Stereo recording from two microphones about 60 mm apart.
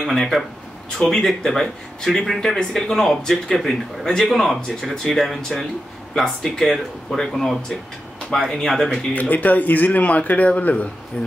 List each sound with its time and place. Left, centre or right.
0.0 s speech: centre
9.1 s speech: left